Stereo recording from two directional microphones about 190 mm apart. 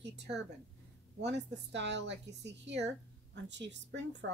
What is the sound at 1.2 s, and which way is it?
A woman's voice, 65° right (ahead or behind).